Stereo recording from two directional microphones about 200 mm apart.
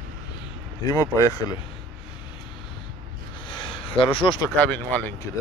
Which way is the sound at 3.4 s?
25° left (ahead or behind).